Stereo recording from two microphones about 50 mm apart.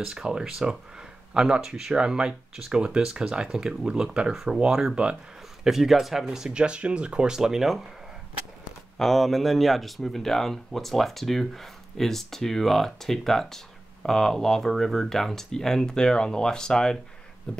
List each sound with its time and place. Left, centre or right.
0.0 s speech: centre
8.9 s speech: centre
17.5 s a sound: centre